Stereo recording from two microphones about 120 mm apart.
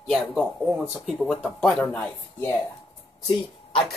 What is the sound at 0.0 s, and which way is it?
Speech, 5° left (ahead or behind).